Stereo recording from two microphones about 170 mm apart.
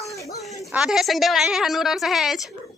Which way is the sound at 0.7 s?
5° right (ahead or behind).